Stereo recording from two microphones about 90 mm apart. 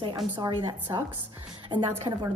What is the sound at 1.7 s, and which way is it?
Speech, 60° right (ahead or behind).